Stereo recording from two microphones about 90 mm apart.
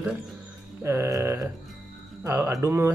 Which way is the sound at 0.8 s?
30° right (ahead or behind).